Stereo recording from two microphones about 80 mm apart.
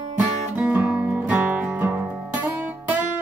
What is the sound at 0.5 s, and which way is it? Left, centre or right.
Music, right.